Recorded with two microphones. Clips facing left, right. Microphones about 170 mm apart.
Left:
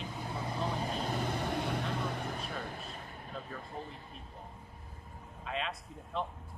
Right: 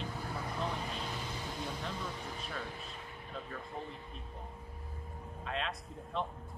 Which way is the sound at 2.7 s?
45° left (ahead or behind).